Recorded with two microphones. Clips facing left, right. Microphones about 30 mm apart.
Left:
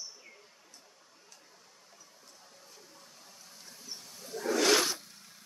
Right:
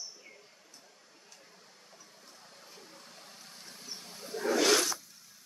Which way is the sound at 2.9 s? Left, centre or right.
Right.